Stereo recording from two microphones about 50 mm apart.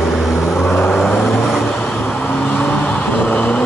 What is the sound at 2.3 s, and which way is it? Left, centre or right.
Vehicle, left.